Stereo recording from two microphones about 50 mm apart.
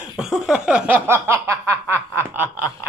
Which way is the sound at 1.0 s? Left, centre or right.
Right.